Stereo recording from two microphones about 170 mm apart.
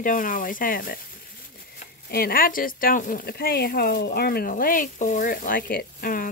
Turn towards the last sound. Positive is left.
turn(degrees=55)  # may be behind; listen again after turning